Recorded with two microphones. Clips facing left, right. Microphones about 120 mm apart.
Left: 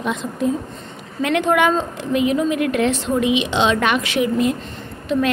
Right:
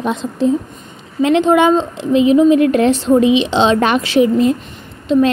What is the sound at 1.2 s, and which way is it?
A woman's voice, 25° right (ahead or behind).